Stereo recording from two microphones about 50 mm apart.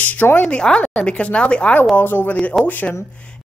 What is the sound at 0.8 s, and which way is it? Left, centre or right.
Speech, left.